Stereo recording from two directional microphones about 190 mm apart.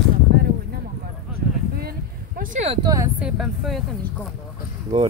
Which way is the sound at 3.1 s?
5° right (ahead or behind).